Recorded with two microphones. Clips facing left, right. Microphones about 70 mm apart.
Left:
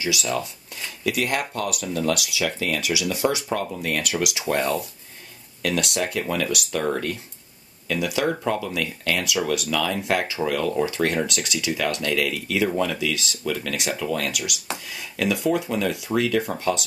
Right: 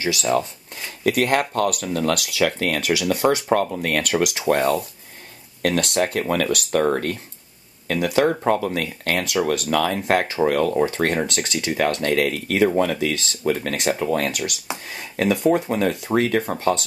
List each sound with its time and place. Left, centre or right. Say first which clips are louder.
0.0 s speech: right 5 dB; right